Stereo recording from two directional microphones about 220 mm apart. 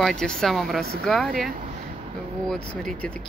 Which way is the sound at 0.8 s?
45° right (ahead or behind).